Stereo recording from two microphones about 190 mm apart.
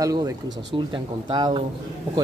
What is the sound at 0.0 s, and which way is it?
Speech, 20° right (ahead or behind).